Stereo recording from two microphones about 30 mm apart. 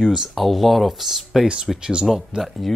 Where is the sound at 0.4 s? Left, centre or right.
Centre.